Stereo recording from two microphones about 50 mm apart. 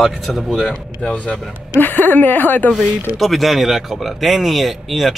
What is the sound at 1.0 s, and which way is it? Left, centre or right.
Speech, left.